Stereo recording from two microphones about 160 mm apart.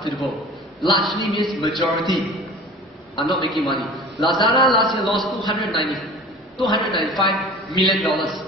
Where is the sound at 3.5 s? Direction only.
Centre (ahead or behind).